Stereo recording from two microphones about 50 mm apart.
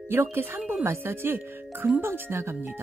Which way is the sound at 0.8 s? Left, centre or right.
Right.